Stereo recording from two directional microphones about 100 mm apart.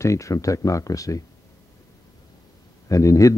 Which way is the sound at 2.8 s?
35° left (ahead or behind).